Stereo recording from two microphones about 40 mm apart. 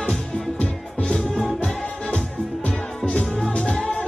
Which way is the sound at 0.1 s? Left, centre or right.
Left.